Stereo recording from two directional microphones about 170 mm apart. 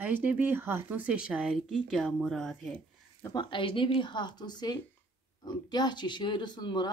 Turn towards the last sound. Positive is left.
turn(degrees=25)  # may be behind; listen again after turning